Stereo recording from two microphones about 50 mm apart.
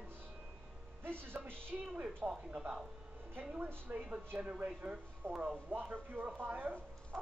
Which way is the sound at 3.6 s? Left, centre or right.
Right.